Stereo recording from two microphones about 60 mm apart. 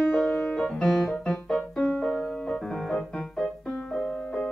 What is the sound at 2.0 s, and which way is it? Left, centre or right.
Music, centre.